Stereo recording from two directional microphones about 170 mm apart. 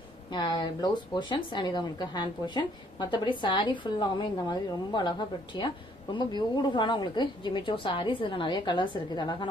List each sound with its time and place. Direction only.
0.3 s speech: 25° left (ahead or behind)